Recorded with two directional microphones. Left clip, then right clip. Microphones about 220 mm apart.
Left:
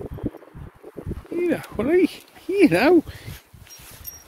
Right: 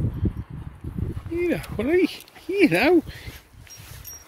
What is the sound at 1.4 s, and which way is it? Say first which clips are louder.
Speech: left 2 dB; 5° left (ahead or behind).